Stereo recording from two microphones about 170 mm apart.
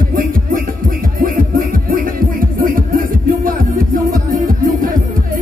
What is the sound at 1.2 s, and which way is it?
Music, 55° right (ahead or behind).